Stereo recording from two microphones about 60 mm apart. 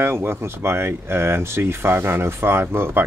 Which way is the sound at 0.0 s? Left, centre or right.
Right.